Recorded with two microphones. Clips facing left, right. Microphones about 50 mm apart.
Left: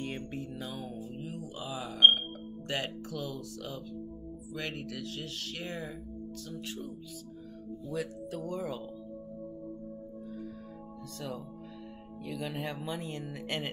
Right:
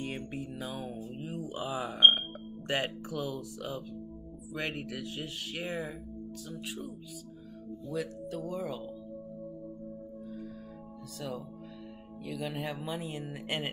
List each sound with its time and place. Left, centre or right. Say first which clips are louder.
0.0 s music: even; centre
0.9 s a sound: right 1 dB; centre
2.7 s speech: right 3 dB; centre
7.9 s speech: right 1 dB; centre
11.1 s speech: right 1 dB; centre